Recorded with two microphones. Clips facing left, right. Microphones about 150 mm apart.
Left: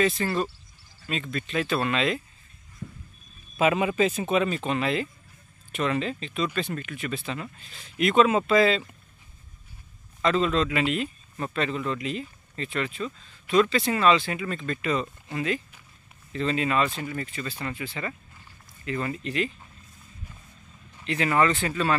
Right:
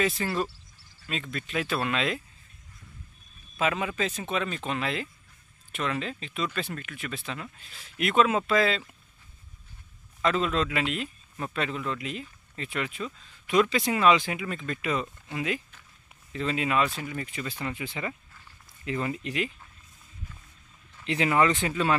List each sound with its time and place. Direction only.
0.0 s speech: 5° right (ahead or behind)
2.8 s vehicle: 35° left (ahead or behind)
3.5 s speech: 10° left (ahead or behind)
10.2 s speech: 5° right (ahead or behind)
21.0 s speech: 20° right (ahead or behind)